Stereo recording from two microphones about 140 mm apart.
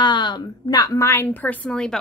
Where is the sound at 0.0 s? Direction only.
30° left (ahead or behind).